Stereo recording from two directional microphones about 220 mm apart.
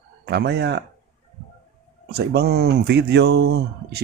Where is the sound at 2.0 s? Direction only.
45° right (ahead or behind).